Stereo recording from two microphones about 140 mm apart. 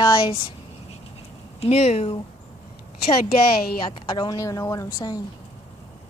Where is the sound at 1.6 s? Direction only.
45° left (ahead or behind).